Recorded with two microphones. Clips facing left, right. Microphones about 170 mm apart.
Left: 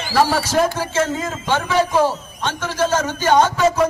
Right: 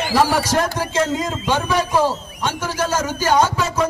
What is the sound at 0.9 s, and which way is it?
Speech, 15° right (ahead or behind).